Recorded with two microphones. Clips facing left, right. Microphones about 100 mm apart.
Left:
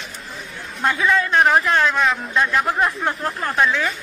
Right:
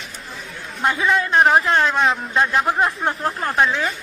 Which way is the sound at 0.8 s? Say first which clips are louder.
Even; 20° right (ahead or behind).